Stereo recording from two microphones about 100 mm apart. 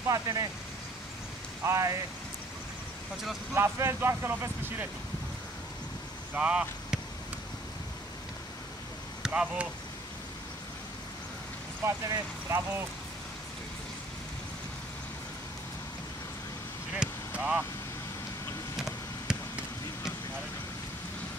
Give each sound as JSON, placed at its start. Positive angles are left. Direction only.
{"t": 0.1, "sound": "speech", "side_deg": -35}
{"t": 1.6, "sound": "speech", "side_deg": -30}
{"t": 3.5, "sound": "speech", "side_deg": -25}
{"t": 6.3, "sound": "speech", "side_deg": -10}
{"t": 9.2, "sound": "speech", "side_deg": -10}
{"t": 11.8, "sound": "speech", "side_deg": -30}
{"t": 17.0, "sound": "a sound", "side_deg": -15}
{"t": 19.3, "sound": "basketball bounce", "side_deg": -5}